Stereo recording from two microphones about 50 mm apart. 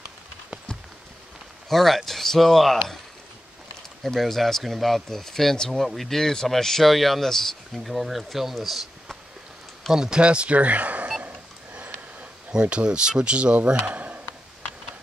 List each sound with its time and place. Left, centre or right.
1.7 s speech: centre
4.0 s speech: centre
9.9 s speech: centre
11.2 s a sound: right
12.5 s speech: centre
13.9 s a sound: right